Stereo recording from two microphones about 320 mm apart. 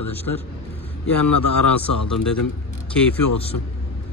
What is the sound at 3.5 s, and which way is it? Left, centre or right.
Speech, left.